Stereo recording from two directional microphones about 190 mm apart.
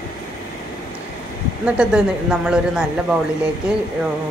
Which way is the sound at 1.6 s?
5° right (ahead or behind).